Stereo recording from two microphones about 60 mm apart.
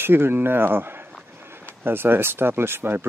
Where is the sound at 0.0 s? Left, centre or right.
Right.